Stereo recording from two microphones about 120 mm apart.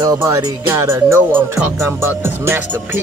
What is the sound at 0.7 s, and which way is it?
Music, 20° right (ahead or behind).